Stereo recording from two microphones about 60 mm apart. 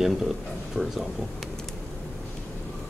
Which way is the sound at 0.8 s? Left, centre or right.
Centre.